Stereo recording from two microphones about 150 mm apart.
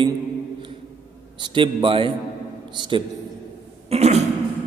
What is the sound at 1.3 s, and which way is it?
A man's voice, 30° right (ahead or behind).